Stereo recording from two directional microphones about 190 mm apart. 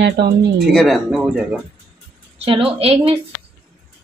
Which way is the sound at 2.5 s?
30° right (ahead or behind).